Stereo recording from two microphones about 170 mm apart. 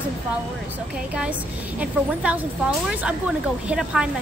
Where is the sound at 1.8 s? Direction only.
10° right (ahead or behind).